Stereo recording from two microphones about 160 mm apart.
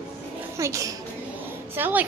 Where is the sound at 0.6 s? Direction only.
20° right (ahead or behind).